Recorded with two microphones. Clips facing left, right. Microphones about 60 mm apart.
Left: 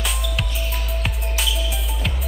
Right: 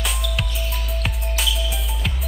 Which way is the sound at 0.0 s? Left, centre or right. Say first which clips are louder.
Even; centre.